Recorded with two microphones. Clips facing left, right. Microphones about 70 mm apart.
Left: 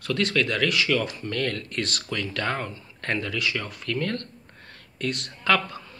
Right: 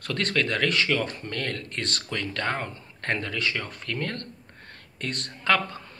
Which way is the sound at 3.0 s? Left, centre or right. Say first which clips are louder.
Left 1 dB; right.